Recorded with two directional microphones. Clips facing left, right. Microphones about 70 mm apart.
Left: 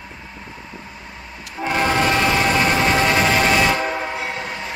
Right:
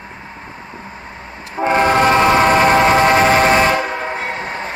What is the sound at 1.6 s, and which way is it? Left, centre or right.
Train, right.